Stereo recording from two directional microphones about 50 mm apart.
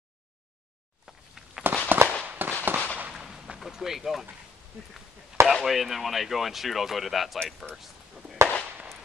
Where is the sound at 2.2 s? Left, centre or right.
Right.